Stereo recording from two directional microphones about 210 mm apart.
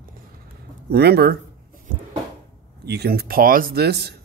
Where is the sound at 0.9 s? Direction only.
50° right (ahead or behind).